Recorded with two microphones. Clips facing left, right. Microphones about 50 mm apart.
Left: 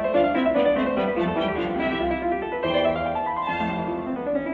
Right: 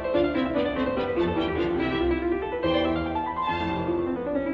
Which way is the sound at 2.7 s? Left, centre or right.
Left.